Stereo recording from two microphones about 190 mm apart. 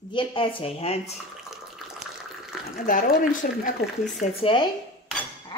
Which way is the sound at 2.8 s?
45° left (ahead or behind).